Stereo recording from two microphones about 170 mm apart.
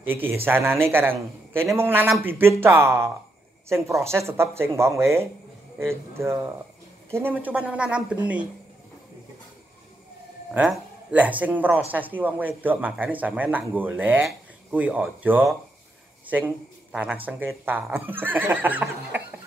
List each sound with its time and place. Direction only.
0.0 s speech: 10° right (ahead or behind)
10.5 s speech: 10° right (ahead or behind)